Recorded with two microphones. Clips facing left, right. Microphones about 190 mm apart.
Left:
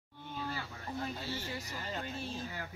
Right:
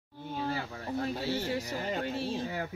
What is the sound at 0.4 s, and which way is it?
Livestock, 60° right (ahead or behind).